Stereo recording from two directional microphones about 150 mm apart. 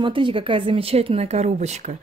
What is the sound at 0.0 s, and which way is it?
Speech, 35° right (ahead or behind).